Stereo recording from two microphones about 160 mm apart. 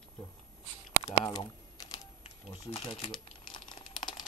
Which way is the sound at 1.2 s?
25° left (ahead or behind).